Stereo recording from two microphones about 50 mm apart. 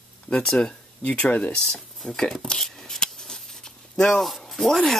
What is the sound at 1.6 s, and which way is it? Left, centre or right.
Speech, centre.